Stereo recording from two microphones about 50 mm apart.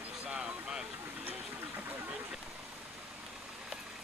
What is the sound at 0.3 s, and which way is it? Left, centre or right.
Vehicle, centre.